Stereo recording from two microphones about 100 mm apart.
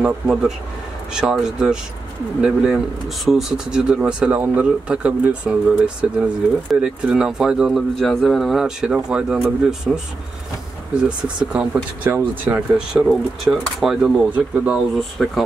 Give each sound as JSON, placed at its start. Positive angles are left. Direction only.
{"t": 0.0, "sound": "speech", "side_deg": -10}
{"t": 9.9, "sound": "speech", "side_deg": 5}
{"t": 11.0, "sound": "speech", "side_deg": -10}
{"t": 12.7, "sound": "speech", "side_deg": -5}
{"t": 14.3, "sound": "speech", "side_deg": -15}
{"t": 15.0, "sound": "speech", "side_deg": 0}